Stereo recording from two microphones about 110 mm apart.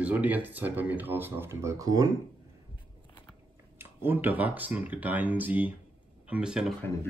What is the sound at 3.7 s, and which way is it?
Speech, 20° right (ahead or behind).